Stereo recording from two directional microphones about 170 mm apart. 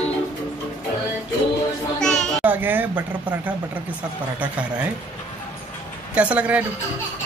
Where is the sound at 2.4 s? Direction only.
10° right (ahead or behind).